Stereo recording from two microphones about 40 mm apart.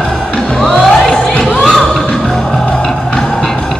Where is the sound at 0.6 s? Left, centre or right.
Centre.